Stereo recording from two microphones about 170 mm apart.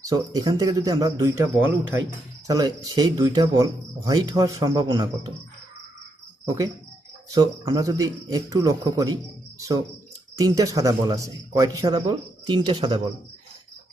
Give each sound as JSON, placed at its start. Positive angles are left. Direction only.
{"t": 0.0, "sound": "speech", "side_deg": -20}
{"t": 6.4, "sound": "speech", "side_deg": -20}